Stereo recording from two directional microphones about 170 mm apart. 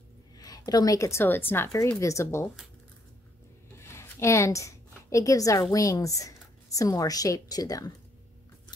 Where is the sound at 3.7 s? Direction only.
15° left (ahead or behind).